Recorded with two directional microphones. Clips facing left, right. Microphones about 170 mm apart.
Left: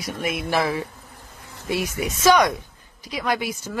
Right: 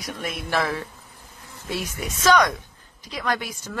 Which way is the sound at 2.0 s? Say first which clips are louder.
Left 2 dB; 10° left (ahead or behind).